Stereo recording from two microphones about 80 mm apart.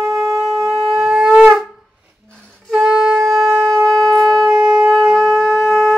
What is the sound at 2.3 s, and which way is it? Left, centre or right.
Music, centre.